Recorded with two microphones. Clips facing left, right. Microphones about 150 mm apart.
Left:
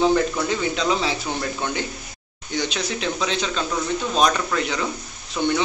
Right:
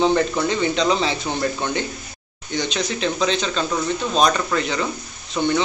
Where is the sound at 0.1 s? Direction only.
5° left (ahead or behind).